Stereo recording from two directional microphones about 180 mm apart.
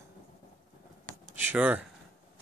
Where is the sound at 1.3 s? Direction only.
10° right (ahead or behind).